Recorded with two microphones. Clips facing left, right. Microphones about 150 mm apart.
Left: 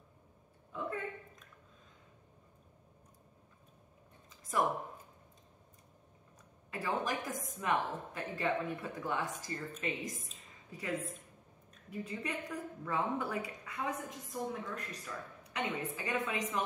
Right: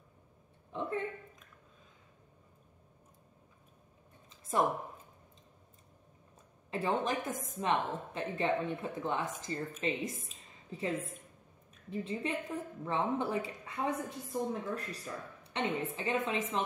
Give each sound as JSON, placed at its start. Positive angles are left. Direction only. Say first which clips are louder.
{"t": 0.7, "sound": "a sound", "louder": "right 3 dB", "side_deg": -25}
{"t": 4.5, "sound": "a woman's voice", "louder": "right 2 dB", "side_deg": -30}
{"t": 6.7, "sound": "a woman's voice", "louder": "right 3 dB", "side_deg": -25}